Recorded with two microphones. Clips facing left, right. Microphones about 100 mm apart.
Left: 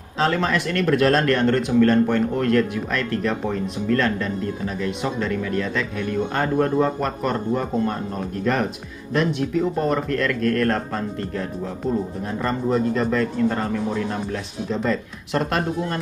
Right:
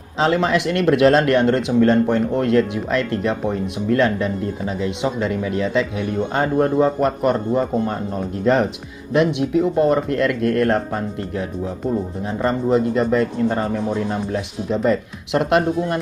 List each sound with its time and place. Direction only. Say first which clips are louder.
0.2 s speech: right 4 dB; 20° right (ahead or behind)
9.1 s a man's voice: right 4 dB; 15° right (ahead or behind)